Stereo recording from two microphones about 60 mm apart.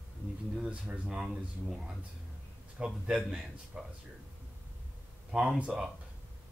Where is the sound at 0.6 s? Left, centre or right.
Right.